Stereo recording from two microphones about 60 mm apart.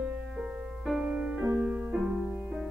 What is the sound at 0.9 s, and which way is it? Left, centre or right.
Music, right.